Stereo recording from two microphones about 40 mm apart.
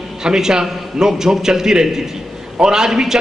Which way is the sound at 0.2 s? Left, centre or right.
Centre.